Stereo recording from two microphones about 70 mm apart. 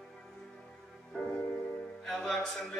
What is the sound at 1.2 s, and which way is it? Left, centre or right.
Music, left.